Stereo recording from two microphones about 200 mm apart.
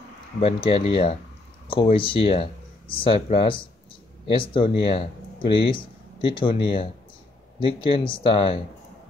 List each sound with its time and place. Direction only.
0.4 s speech: 30° left (ahead or behind)